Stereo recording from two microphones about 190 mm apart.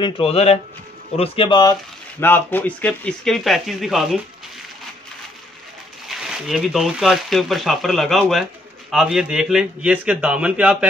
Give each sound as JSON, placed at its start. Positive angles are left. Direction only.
{"t": 0.0, "sound": "a man's voice", "side_deg": 30}
{"t": 6.0, "sound": "speech", "side_deg": 0}